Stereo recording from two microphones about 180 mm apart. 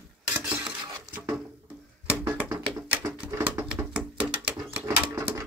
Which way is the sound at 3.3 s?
15° right (ahead or behind).